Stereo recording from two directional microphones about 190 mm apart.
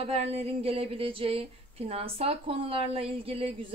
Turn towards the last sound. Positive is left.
turn(degrees=-30)  # may be behind; listen again after turning